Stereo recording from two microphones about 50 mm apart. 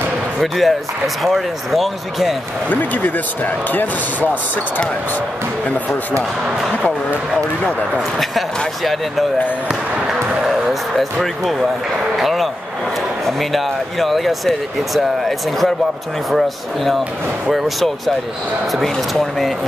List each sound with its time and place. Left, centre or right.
0.4 s speech: centre
2.7 s speech: left
8.2 s speech: centre